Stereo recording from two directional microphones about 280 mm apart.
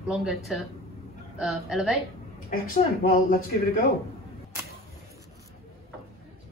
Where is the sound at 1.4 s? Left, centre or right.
Centre.